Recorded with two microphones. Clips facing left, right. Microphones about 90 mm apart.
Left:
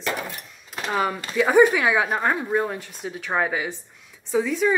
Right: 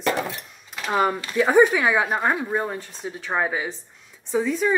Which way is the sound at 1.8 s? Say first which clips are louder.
Even; centre (ahead or behind).